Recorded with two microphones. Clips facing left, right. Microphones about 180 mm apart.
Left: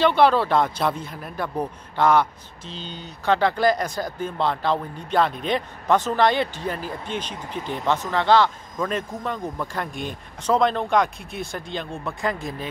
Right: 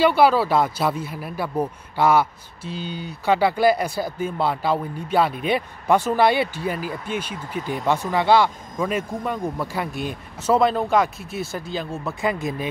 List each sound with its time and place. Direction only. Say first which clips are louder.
0.0 s speech: right 1 dB; 5° right (ahead or behind)
12.4 s speech: right 4 dB; 20° right (ahead or behind)